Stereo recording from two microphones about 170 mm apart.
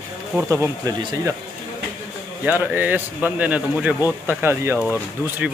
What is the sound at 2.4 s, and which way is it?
Speech, 10° right (ahead or behind).